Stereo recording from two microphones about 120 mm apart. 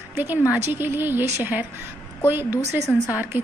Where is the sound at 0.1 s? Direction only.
20° right (ahead or behind).